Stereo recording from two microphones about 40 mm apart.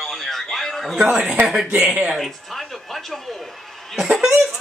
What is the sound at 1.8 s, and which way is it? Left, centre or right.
Speech, right.